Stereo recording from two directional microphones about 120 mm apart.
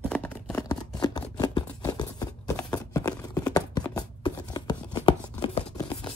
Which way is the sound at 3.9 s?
35° left (ahead or behind).